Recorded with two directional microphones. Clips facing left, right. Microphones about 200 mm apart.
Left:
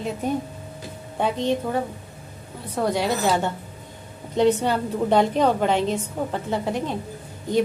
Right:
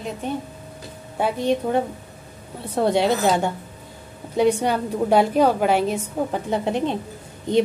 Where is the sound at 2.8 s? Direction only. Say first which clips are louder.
Right 4 dB; 25° right (ahead or behind).